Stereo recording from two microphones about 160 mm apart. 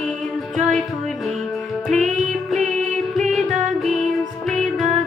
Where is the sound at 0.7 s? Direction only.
Centre (ahead or behind).